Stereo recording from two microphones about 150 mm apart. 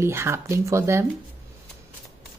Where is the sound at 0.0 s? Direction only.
15° right (ahead or behind).